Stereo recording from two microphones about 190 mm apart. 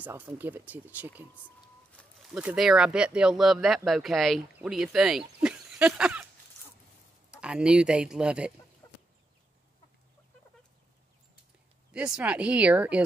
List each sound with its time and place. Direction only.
0.0 s speech: 10° right (ahead or behind)
1.9 s a sound: 5° left (ahead or behind)
2.3 s speech: 5° right (ahead or behind)
7.2 s speech: 5° right (ahead or behind)
11.9 s speech: 5° right (ahead or behind)